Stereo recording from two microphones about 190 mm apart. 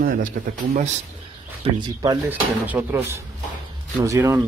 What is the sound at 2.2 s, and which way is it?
Speech, 5° right (ahead or behind).